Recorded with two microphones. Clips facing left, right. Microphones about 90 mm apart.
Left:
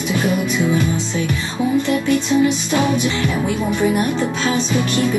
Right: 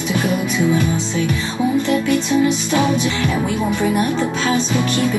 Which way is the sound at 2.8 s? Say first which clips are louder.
Left 1 dB; 25° right (ahead or behind).